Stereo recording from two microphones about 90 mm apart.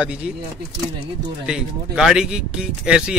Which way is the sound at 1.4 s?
10° right (ahead or behind).